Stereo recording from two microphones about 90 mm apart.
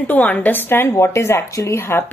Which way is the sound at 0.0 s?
20° left (ahead or behind).